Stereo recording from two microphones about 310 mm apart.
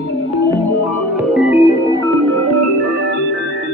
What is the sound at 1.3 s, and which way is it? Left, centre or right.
Music, centre.